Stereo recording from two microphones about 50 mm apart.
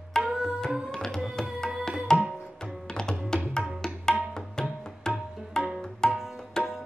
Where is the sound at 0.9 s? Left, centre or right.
Centre.